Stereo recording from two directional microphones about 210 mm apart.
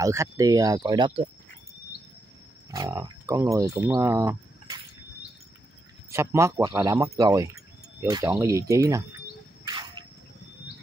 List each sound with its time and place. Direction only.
0.0 s speech: 15° right (ahead or behind)
2.7 s speech: 15° right (ahead or behind)
6.0 s speech: 15° right (ahead or behind)
9.7 s a sound: 20° right (ahead or behind)